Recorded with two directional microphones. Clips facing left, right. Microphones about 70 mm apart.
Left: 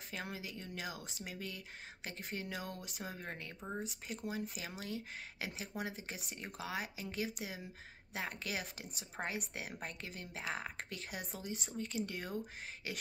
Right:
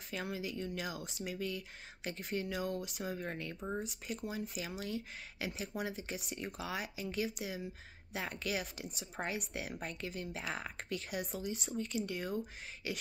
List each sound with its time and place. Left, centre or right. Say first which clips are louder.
0.1 s speech: right 5 dB; left